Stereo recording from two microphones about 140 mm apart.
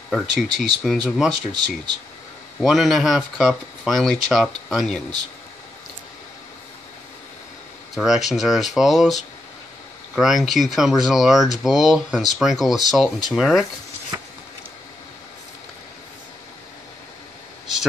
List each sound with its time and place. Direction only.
0.1 s speech: centre (ahead or behind)
2.6 s speech: centre (ahead or behind)
7.9 s speech: centre (ahead or behind)
14.1 s a sound: 20° right (ahead or behind)